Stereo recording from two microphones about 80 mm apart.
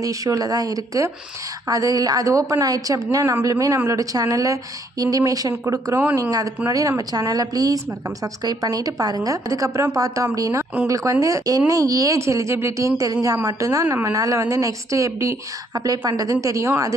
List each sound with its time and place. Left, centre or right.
0.0 s speech: right
15.7 s a woman's voice: right